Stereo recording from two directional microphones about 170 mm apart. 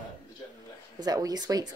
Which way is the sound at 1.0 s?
25° right (ahead or behind).